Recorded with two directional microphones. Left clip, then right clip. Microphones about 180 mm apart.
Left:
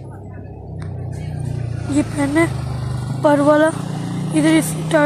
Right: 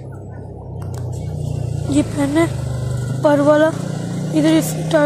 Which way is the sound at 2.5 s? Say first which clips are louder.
Right 1 dB; 55° right (ahead or behind).